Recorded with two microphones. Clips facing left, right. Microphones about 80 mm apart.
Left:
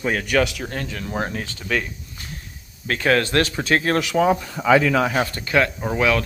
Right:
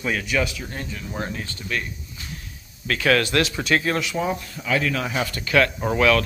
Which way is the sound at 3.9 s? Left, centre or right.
Left.